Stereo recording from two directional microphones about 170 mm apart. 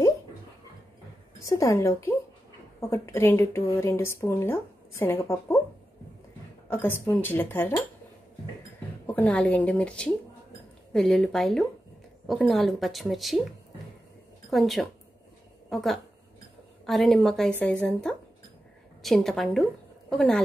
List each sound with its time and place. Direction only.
1.4 s a woman's voice: 20° left (ahead or behind)
6.7 s a woman's voice: 15° left (ahead or behind)
9.0 s a woman's voice: 10° left (ahead or behind)
14.5 s a woman's voice: centre (ahead or behind)